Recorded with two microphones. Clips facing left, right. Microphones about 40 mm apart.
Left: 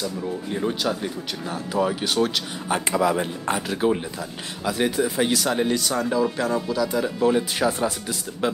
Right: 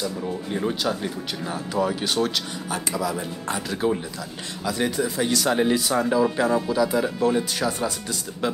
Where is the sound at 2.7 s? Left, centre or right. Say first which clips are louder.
Left 7 dB; left.